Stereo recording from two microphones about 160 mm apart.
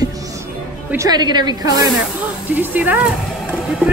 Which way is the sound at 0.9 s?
25° right (ahead or behind).